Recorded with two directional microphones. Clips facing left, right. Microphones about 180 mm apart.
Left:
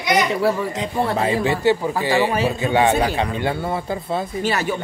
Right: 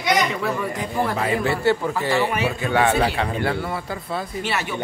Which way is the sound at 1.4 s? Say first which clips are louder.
Left 2 dB; 15° left (ahead or behind).